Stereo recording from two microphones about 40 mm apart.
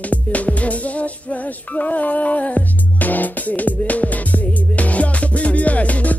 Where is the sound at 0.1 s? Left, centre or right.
Left.